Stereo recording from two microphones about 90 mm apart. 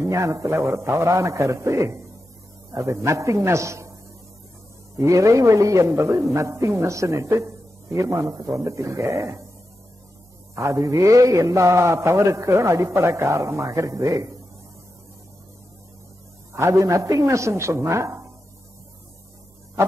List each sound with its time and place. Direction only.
0.0 s a man's voice: 35° right (ahead or behind)
4.9 s a man's voice: 35° right (ahead or behind)
10.5 s a man's voice: 35° right (ahead or behind)
16.5 s a man's voice: 30° right (ahead or behind)